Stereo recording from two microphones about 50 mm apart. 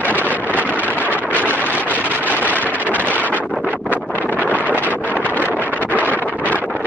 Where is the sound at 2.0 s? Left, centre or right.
Right.